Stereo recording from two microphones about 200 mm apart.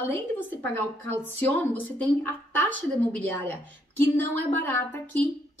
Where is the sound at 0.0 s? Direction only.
10° left (ahead or behind).